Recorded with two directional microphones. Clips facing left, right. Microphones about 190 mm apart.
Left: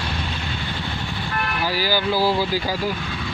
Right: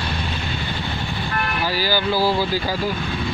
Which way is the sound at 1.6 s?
15° left (ahead or behind).